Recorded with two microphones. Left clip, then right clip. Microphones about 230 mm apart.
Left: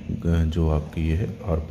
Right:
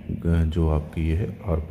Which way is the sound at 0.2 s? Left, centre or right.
Centre.